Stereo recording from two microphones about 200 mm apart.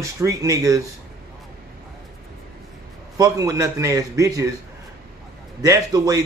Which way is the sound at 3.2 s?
15° right (ahead or behind).